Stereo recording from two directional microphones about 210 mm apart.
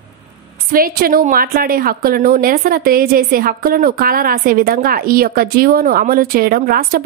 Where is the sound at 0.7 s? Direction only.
45° right (ahead or behind).